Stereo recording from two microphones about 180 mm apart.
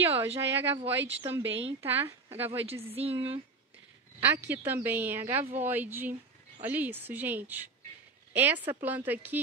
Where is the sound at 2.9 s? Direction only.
30° right (ahead or behind).